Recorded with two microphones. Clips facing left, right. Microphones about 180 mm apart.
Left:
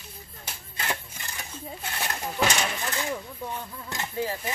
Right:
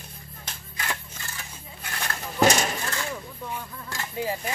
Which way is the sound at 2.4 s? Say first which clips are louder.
Right 5 dB; 40° right (ahead or behind).